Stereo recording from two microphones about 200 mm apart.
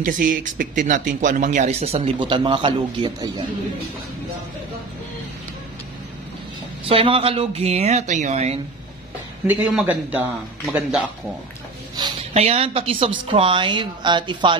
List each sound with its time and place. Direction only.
0.0 s speech: 40° right (ahead or behind); by 3.4 s 20° right (ahead or behind)
6.9 s speech: 30° right (ahead or behind)
9.5 s a man's voice: 5° right (ahead or behind)
12.0 s a woman's voice: 30° right (ahead or behind)